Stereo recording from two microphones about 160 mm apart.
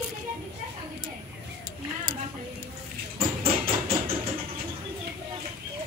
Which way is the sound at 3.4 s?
35° right (ahead or behind).